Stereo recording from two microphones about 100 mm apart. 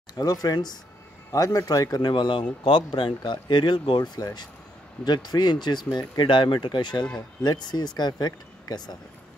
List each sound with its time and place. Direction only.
0.2 s speech: 40° left (ahead or behind)